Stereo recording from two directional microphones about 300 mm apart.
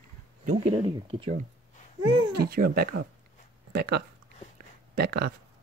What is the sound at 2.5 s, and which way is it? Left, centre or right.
Speech, right.